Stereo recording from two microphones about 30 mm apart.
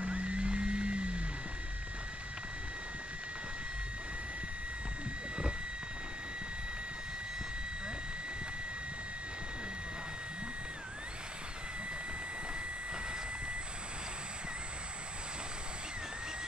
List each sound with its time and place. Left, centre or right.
0.0 s vehicle: right